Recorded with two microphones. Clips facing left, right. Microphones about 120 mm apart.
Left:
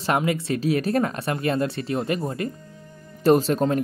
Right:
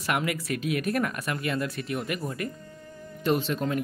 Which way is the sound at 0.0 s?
25° left (ahead or behind).